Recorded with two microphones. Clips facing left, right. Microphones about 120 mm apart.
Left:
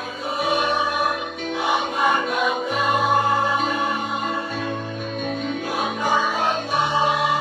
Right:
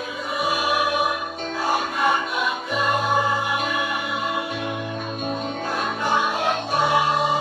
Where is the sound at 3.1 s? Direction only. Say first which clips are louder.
Left 2 dB; 40° left (ahead or behind).